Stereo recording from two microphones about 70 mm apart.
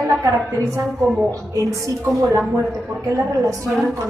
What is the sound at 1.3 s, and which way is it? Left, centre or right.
Speech, right.